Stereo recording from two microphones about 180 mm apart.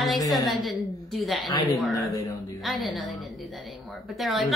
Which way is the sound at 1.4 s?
20° left (ahead or behind).